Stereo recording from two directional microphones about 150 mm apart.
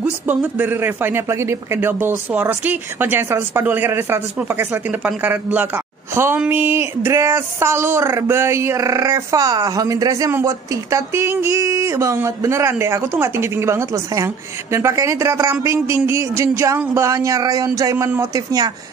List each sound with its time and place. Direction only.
0.0 s speech: 10° right (ahead or behind)